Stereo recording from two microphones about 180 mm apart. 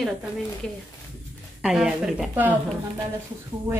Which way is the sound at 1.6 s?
5° right (ahead or behind).